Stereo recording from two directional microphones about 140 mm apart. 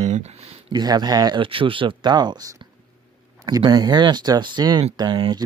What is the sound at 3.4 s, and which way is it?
Speech, 30° right (ahead or behind).